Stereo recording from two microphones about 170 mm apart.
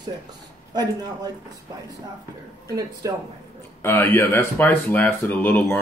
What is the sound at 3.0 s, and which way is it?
Speech, 20° right (ahead or behind).